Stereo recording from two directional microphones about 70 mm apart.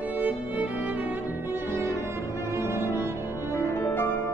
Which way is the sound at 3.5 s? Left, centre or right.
Left.